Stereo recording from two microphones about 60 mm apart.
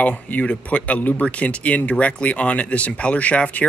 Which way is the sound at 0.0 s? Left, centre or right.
Left.